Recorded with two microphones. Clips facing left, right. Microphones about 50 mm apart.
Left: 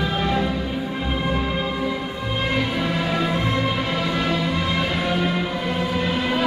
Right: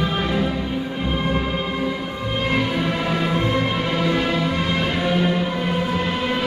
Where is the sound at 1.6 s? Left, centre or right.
Centre.